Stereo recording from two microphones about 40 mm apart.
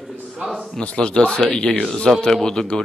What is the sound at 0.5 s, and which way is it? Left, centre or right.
A man's voice, left.